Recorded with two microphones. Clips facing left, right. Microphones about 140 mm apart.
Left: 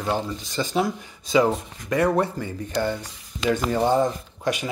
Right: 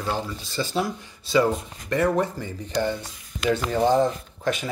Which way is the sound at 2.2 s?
15° right (ahead or behind).